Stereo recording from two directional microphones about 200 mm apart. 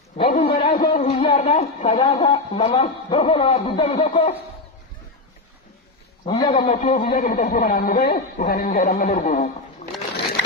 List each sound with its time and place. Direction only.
0.2 s a sound: 30° left (ahead or behind)
1.0 s speech: 35° left (ahead or behind)
6.2 s a man's voice: 20° left (ahead or behind)
6.5 s music: 35° left (ahead or behind)
7.9 s music: 30° left (ahead or behind)
8.6 s music: 45° left (ahead or behind)
9.8 s a sound: 35° left (ahead or behind)